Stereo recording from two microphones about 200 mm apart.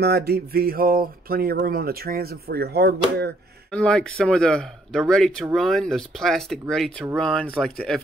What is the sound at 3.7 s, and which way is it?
Speech, 5° left (ahead or behind).